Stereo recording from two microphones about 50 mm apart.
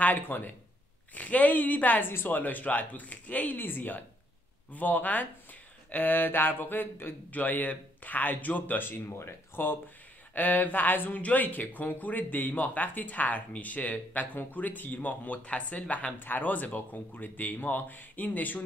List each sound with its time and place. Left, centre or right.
0.0 s speech: left
10.3 s speech: left
16.2 s speech: left